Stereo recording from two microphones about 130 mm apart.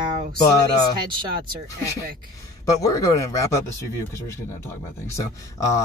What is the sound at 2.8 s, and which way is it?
Speech, 25° left (ahead or behind).